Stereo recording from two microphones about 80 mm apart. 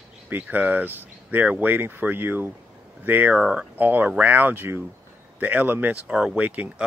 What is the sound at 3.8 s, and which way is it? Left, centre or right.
Speech, right.